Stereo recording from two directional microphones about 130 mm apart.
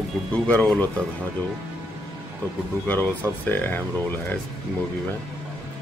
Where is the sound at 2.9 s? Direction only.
15° left (ahead or behind).